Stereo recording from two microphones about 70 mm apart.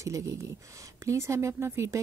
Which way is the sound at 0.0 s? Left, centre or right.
Right.